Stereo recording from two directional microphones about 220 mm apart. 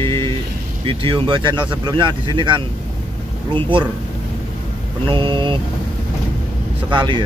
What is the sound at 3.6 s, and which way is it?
Speech, 20° right (ahead or behind).